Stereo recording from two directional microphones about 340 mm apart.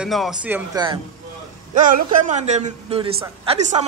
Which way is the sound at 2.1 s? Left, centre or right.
Right.